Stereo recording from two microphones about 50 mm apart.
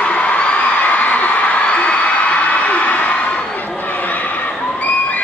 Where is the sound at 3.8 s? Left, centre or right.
Left.